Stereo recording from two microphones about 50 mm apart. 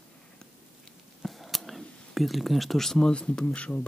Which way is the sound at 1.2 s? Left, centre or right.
Centre.